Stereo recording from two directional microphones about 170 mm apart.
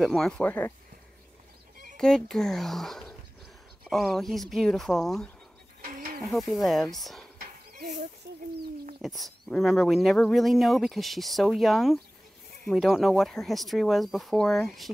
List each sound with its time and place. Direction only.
0.0 s speech: centre (ahead or behind)
2.0 s speech: 5° left (ahead or behind)
5.9 s snake: 60° right (ahead or behind)
6.3 s speech: centre (ahead or behind)
9.0 s speech: centre (ahead or behind)